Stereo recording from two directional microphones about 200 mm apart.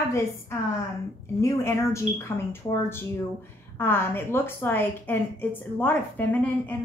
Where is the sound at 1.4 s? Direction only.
15° left (ahead or behind).